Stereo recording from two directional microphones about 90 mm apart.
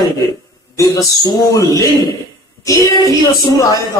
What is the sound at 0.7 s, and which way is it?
A woman's voice, 40° left (ahead or behind).